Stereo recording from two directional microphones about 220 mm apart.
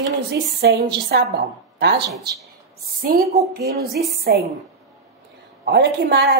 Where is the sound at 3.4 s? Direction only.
45° right (ahead or behind).